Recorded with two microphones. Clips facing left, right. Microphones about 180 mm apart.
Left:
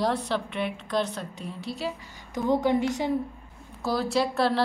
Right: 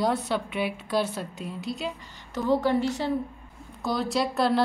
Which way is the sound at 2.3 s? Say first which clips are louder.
Even; 15° left (ahead or behind).